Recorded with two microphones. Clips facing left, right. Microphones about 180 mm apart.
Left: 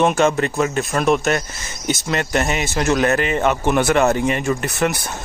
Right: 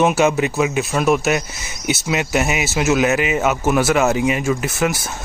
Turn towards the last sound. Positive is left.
turn(degrees=0)  # may be behind; listen again after turning